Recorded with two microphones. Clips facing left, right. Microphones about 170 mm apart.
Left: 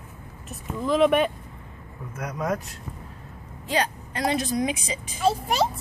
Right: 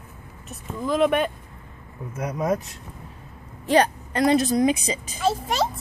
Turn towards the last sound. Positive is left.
turn(degrees=5)  # may be behind; listen again after turning